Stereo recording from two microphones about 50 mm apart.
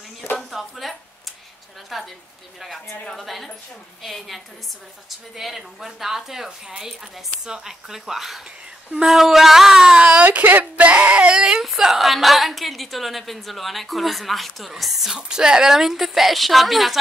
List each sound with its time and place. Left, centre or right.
0.4 s a sound: centre
1.9 s a woman's voice: centre
9.9 s speech: right
10.2 s whimper: right; by 11.6 s centre
11.6 s a woman's voice: centre
15.1 s a woman's voice: centre